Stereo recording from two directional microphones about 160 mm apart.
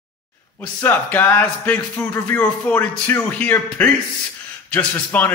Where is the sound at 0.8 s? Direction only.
10° left (ahead or behind).